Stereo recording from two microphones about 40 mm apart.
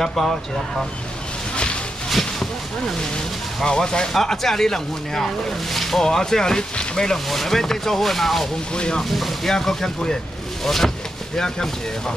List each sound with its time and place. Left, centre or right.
0.1 s speech: centre
3.6 s speech: centre
4.1 s speech: centre
8.7 s speech: left
9.1 s speech: centre